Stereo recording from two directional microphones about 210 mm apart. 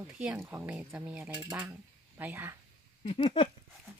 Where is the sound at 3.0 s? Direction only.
25° left (ahead or behind).